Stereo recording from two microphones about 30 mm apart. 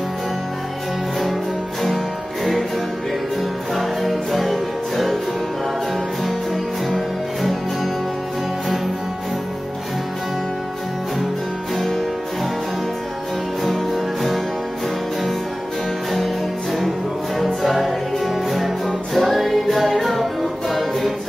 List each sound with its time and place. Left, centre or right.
3.7 s music: centre
6.2 s music: centre
11.7 s music: centre
17.6 s music: centre